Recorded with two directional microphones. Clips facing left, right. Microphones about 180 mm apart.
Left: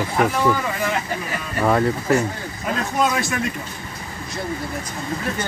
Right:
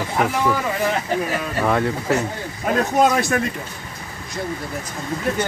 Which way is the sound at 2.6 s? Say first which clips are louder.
Right 4 dB; 45° right (ahead or behind).